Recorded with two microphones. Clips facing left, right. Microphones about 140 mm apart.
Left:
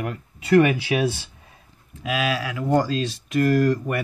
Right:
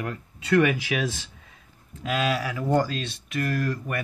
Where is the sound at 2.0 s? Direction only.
5° left (ahead or behind).